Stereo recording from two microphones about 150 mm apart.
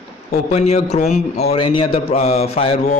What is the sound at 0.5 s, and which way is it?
A man's voice, 45° left (ahead or behind).